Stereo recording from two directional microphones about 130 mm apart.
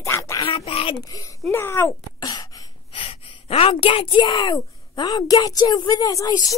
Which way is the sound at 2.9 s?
45° left (ahead or behind).